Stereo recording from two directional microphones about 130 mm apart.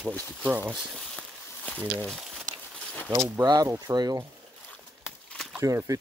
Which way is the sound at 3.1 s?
25° right (ahead or behind).